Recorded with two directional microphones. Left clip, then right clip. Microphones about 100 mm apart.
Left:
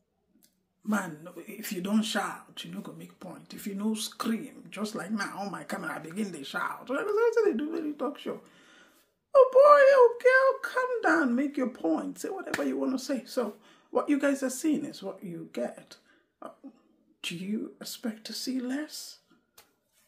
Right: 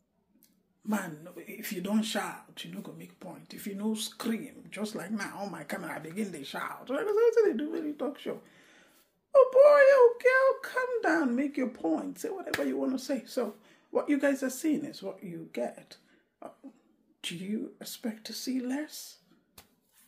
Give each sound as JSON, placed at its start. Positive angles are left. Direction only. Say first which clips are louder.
{"t": 0.8, "sound": "speech", "louder": "left 3 dB", "side_deg": 30}
{"t": 9.3, "sound": "wail", "louder": "left 2 dB", "side_deg": 30}
{"t": 12.5, "sound": "speech", "louder": "left 1 dB", "side_deg": 35}